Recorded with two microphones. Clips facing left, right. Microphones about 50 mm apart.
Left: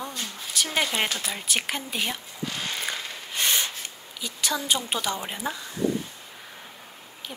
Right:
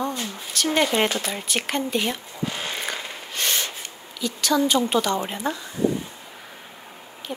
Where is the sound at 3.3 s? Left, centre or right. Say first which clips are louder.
Even; centre.